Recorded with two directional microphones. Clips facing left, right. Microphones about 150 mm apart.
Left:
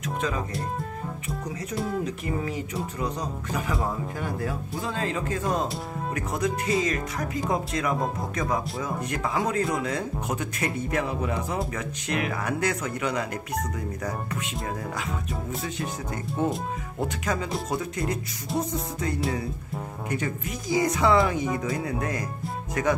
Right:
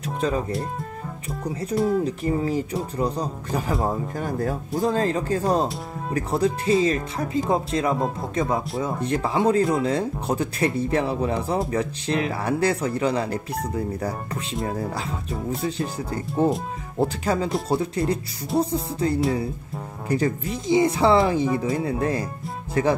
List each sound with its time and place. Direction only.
0.2 s speech: 35° right (ahead or behind)
2.0 s speech: 35° right (ahead or behind)
15.6 s speech: 30° right (ahead or behind)